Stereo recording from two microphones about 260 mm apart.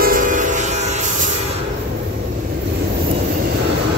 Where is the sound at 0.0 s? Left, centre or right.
Right.